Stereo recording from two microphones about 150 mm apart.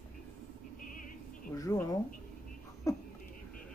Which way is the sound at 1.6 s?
20° left (ahead or behind).